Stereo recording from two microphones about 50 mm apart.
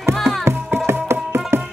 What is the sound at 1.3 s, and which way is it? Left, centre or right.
Music, right.